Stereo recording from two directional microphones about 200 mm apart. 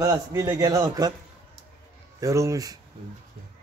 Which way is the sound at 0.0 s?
15° right (ahead or behind).